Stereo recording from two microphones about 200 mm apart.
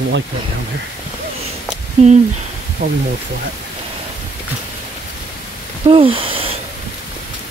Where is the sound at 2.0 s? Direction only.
35° right (ahead or behind).